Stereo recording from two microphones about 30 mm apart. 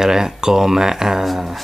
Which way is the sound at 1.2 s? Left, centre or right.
Centre.